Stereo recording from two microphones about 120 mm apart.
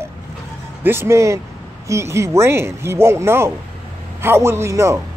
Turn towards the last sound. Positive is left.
turn(degrees=-25)  # may be behind; listen again after turning